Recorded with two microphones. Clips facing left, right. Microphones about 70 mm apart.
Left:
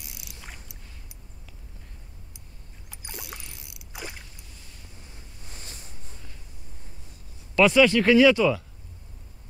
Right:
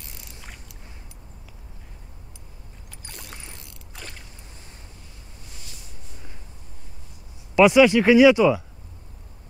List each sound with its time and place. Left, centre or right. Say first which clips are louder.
0.0 s boat: right 1 dB; centre
3.1 s rowboat: left 2 dB; centre
3.7 s mechanisms: left 6 dB; centre
5.6 s a sound: left 3 dB; left
7.5 s speech: right 4 dB; centre